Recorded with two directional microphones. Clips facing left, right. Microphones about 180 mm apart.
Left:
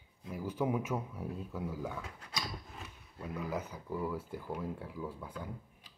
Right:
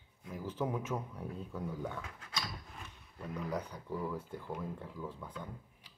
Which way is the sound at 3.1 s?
5° left (ahead or behind).